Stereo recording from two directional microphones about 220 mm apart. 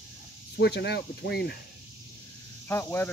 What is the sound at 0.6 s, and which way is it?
Speech, 50° left (ahead or behind).